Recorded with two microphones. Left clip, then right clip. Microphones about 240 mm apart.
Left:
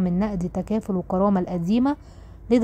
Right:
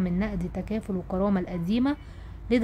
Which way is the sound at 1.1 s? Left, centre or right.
Centre.